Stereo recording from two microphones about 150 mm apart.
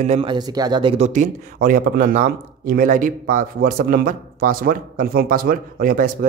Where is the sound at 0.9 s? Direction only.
50° right (ahead or behind).